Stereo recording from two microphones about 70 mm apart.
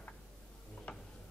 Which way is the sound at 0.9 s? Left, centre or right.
Centre.